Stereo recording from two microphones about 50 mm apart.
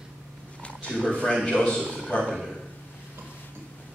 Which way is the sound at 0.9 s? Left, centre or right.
Centre.